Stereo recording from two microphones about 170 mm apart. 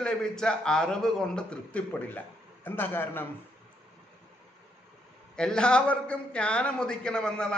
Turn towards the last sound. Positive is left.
turn(degrees=5)  # may be behind; listen again after turning